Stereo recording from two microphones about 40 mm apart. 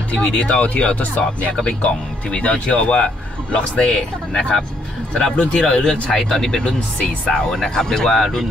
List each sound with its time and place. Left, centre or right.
0.1 s speech: left
6.0 s speech: centre